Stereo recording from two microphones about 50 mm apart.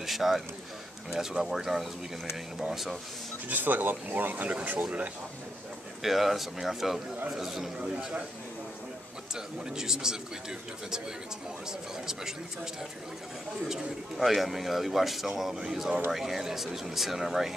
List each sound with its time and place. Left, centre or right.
0.0 s a sound: centre
1.1 s speech: centre
3.4 s speech: right
4.8 s speech: right
6.0 s speech: centre
9.3 s speech: centre
12.1 s speech: centre
13.7 s speech: centre